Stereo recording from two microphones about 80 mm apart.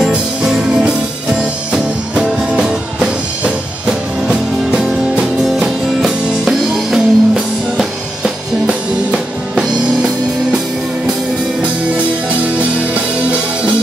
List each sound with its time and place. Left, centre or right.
0.0 s music: centre
2.1 s music: centre